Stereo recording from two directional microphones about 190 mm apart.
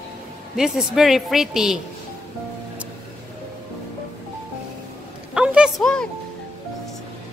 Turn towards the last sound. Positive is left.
turn(degrees=5)  # may be behind; listen again after turning